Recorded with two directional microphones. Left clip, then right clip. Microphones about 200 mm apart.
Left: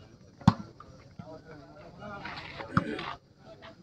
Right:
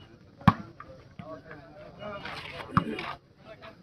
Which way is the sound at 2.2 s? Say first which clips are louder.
Right 1 dB; 60° right (ahead or behind).